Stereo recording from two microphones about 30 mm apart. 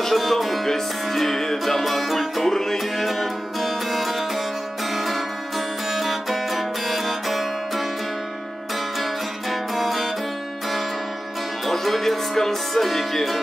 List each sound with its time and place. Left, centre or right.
0.1 s music: centre
2.4 s music: centre
3.0 s music: centre
9.5 s music: centre
11.7 s music: centre